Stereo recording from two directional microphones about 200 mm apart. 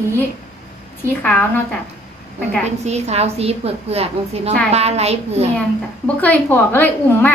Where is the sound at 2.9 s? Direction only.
30° right (ahead or behind).